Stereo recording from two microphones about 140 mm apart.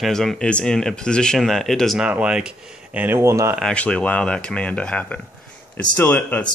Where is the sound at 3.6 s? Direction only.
5° left (ahead or behind).